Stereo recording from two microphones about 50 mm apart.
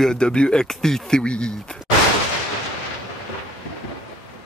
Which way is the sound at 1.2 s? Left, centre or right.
Centre.